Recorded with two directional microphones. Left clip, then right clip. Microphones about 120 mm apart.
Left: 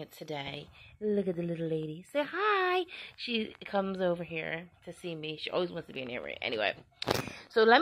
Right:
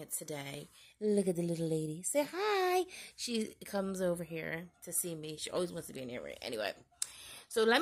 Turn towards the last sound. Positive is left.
turn(degrees=5)  # may be behind; listen again after turning